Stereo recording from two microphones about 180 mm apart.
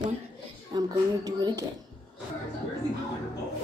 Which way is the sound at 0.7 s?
20° right (ahead or behind).